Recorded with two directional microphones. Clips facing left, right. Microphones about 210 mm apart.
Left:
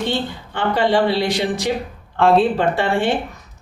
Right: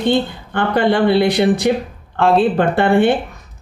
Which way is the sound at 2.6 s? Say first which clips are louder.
Right 5 dB; 55° right (ahead or behind).